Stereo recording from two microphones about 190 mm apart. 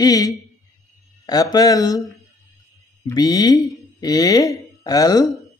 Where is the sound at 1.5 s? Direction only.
20° left (ahead or behind).